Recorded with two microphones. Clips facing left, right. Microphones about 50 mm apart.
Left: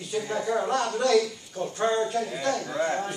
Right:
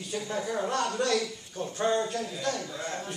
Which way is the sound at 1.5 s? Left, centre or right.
Left.